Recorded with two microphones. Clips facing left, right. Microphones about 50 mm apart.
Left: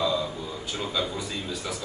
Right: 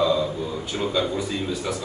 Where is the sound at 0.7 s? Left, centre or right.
Right.